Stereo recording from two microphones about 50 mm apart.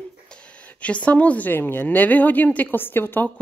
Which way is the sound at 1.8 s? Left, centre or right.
Left.